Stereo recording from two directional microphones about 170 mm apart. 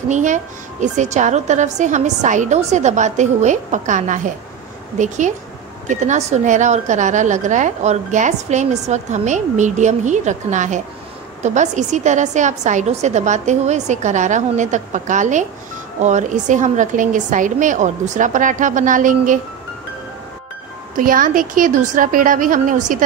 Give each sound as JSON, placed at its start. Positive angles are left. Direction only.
{"t": 0.1, "sound": "a woman's voice", "side_deg": -45}
{"t": 20.9, "sound": "a woman's voice", "side_deg": -55}